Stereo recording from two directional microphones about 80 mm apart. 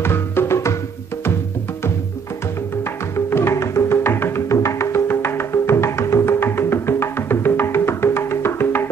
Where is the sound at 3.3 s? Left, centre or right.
Left.